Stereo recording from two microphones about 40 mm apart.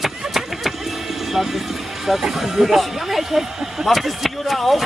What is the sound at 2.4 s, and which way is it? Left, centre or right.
Speech, centre.